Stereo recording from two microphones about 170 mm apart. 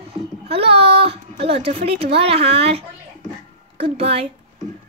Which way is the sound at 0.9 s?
35° right (ahead or behind).